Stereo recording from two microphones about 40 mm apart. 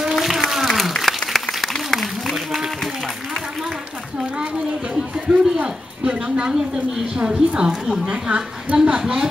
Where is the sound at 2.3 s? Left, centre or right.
Centre.